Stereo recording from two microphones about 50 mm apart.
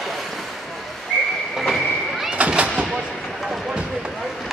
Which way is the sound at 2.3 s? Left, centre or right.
Right.